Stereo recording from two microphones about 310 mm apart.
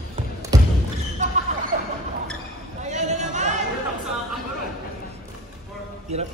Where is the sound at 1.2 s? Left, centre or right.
Right.